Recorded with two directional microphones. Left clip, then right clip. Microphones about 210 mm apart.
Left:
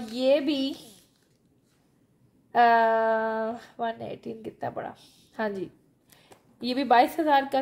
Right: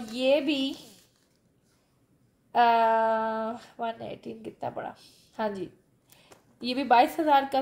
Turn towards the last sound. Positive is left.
turn(degrees=25)  # may be behind; listen again after turning